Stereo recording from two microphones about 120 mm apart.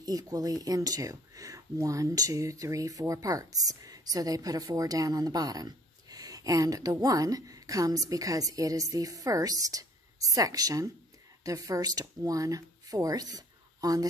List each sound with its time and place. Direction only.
0.0 s speech: 30° right (ahead or behind)